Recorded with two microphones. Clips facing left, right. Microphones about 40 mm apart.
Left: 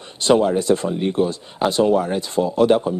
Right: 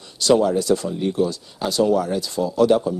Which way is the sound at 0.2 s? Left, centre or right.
Left.